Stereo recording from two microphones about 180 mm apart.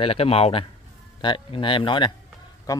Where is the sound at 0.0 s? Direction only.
30° left (ahead or behind).